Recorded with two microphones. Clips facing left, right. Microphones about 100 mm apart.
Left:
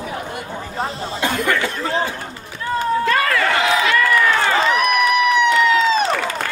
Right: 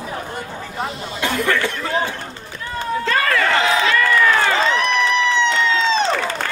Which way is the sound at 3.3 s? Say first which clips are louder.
Even; 30° right (ahead or behind).